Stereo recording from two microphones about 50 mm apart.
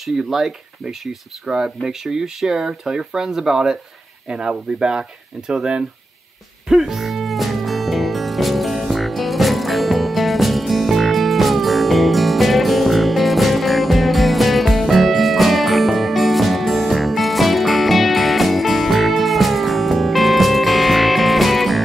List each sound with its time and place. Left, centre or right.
0.0 s speech: centre
6.7 s music: centre